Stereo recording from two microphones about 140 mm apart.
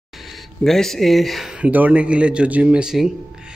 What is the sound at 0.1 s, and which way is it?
Speech, centre (ahead or behind).